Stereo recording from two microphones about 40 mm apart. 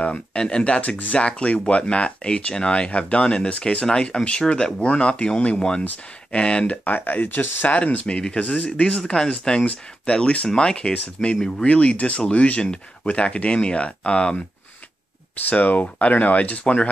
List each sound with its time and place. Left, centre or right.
0.0 s speech: left
0.7 s speech: left; by 4.8 s centre
4.8 s speech: left
6.8 s speech: left
7.7 s speech: left
9.0 s speech: centre
9.6 s speech: left
10.5 s speech: left
15.5 s speech: left